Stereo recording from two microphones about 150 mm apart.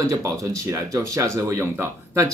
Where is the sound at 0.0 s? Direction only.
20° right (ahead or behind).